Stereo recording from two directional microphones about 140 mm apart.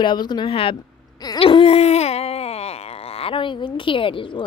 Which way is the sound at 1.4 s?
40° left (ahead or behind).